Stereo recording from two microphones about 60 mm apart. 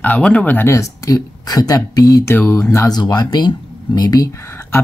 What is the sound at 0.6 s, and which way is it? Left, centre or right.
Speech, left.